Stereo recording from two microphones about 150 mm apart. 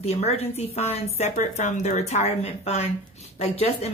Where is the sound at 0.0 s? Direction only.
45° left (ahead or behind).